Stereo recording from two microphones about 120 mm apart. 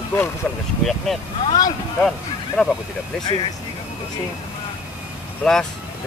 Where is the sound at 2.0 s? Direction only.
5° left (ahead or behind).